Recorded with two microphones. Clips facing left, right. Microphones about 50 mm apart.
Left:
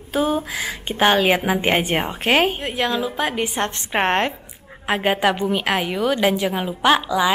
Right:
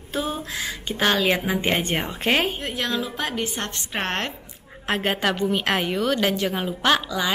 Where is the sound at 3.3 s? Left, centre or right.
Left.